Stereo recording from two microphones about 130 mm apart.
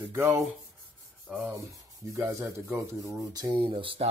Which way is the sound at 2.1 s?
20° right (ahead or behind).